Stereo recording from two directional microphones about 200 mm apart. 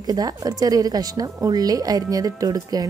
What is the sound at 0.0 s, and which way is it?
Speech, 20° right (ahead or behind).